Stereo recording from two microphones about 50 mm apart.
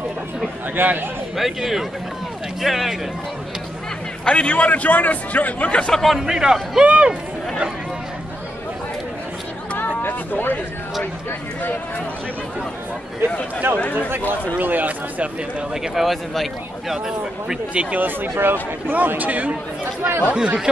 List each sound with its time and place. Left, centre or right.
0.8 s speech: right
1.3 s speech: centre
4.2 s a man's voice: left
5.9 s speech: centre
6.2 s a man's voice: centre
6.8 s speech: right
10.0 s speech: left
13.7 s speech: right
14.2 s speech: left
14.6 s speech: right
15.7 s speech: centre
17.9 s speech: right